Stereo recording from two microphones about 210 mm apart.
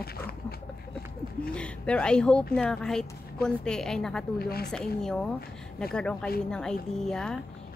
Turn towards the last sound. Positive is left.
turn(degrees=0)  # may be behind; listen again after turning